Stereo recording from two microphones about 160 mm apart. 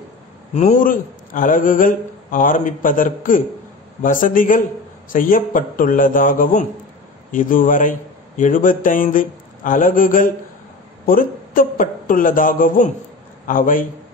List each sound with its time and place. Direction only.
0.6 s speech: 50° left (ahead or behind)